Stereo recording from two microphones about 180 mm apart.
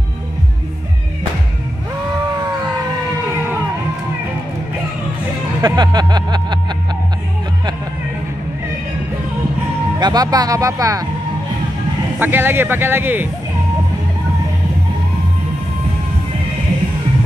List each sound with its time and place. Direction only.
5.6 s vehicle: 25° right (ahead or behind)
9.9 s speech: 20° right (ahead or behind)
12.2 s speech: 10° right (ahead or behind)